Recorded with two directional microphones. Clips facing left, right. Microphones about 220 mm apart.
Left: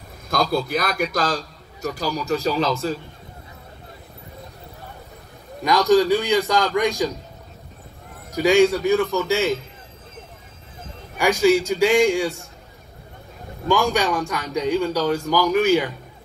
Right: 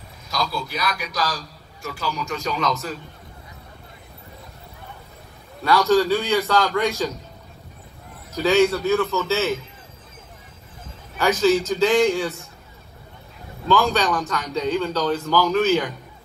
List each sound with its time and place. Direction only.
0.3 s a sound: 55° left (ahead or behind)
0.7 s a man's voice: 50° left (ahead or behind); by 3.0 s 30° left (ahead or behind)
5.6 s a man's voice: 15° left (ahead or behind)
8.3 s a man's voice: 15° left (ahead or behind)
11.1 s a man's voice: 15° left (ahead or behind)
13.7 s a man's voice: 15° left (ahead or behind)